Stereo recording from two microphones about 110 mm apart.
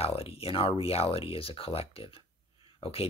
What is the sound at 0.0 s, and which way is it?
Speech, 60° left (ahead or behind).